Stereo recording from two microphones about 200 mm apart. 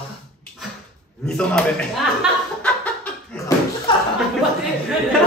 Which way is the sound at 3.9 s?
25° left (ahead or behind).